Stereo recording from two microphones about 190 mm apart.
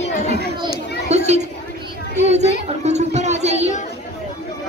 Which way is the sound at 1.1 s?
35° right (ahead or behind).